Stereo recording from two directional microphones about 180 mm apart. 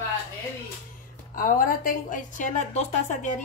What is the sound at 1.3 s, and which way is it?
A woman's voice, 50° left (ahead or behind).